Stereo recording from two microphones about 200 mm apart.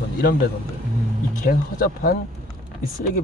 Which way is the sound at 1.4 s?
45° left (ahead or behind).